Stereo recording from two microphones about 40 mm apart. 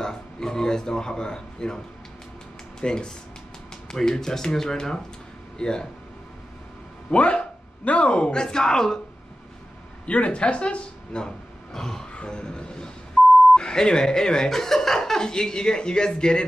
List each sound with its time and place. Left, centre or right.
0.0 s a man's voice: centre
2.8 s speech: left
3.9 s speech: centre
7.1 s speech: left; by 9.0 s centre
10.0 s speech: left
11.7 s speech: centre
12.1 s speech: left
13.2 s beep: left
13.6 s speech: centre